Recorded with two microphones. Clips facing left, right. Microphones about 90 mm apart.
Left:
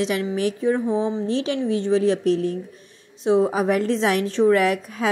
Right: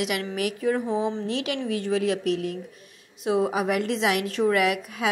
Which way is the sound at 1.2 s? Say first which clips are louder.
Left 5 dB; 30° left (ahead or behind).